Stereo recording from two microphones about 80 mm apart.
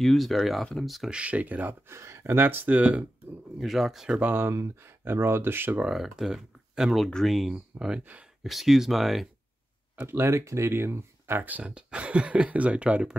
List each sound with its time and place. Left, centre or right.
0.0 s speech: centre
1.1 s speech: centre
2.0 s speech: right; by 3.1 s centre
3.5 s speech: centre
4.2 s speech: right
4.5 s speech: right
5.9 s speech: centre
7.5 s speech: centre
8.5 s speech: centre
9.9 s speech: right; by 13.2 s centre